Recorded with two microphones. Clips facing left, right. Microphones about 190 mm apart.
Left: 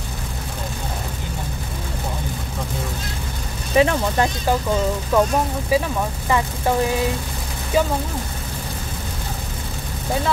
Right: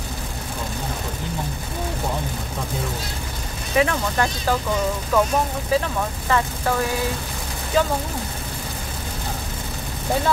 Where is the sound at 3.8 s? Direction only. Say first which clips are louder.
Left 3 dB; 20° left (ahead or behind).